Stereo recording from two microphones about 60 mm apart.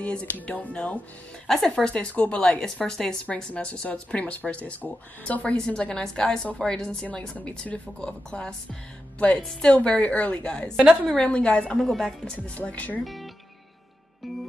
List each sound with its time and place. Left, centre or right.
0.0 s speech: centre
1.5 s speech: centre
9.4 s speech: centre
9.7 s speech: centre
11.8 s speech: centre
12.4 s speech: left
13.0 s music: centre